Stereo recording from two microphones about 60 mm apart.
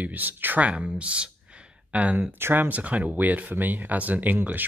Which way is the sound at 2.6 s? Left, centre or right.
Right.